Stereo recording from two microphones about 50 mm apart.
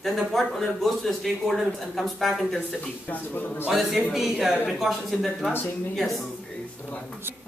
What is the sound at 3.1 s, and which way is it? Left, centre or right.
Speech, left.